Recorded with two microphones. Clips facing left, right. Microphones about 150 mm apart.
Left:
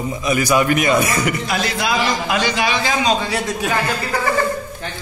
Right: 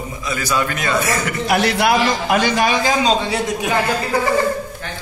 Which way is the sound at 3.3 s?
20° right (ahead or behind).